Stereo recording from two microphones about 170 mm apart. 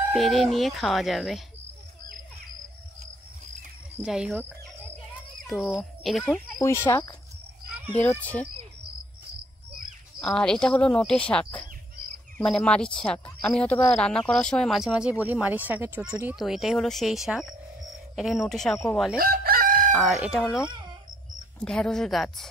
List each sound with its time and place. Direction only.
0.1 s speech: centre (ahead or behind)
4.0 s speech: 5° right (ahead or behind)
6.6 s speech: 15° left (ahead or behind)
10.2 s speech: 5° left (ahead or behind)
19.1 s chicken: 60° right (ahead or behind)
19.9 s speech: centre (ahead or behind)
21.6 s speech: 5° left (ahead or behind)